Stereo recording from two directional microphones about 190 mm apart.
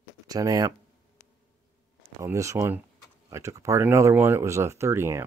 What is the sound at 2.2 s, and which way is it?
Speech, 15° right (ahead or behind).